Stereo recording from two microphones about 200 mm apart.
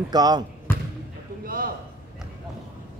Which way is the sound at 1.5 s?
45° right (ahead or behind).